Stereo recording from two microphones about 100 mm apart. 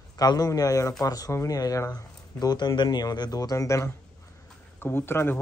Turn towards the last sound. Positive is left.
turn(degrees=20)  # may be behind; listen again after turning